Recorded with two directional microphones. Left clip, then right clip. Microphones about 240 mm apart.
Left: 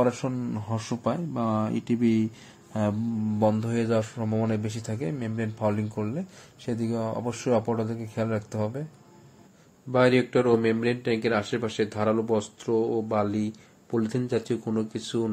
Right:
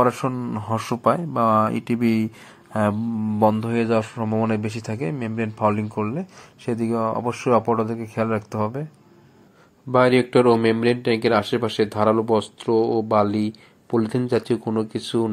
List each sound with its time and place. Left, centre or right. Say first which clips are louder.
0.0 s a man's voice: right 6 dB; centre
9.8 s a man's voice: right 5 dB; centre